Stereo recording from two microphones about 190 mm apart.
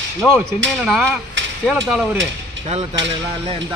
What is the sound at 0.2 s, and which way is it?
Speech, 5° right (ahead or behind).